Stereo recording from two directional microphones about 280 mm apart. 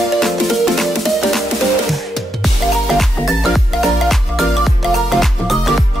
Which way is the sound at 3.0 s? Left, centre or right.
Centre.